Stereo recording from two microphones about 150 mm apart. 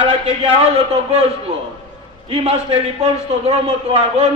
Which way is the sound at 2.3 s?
40° right (ahead or behind).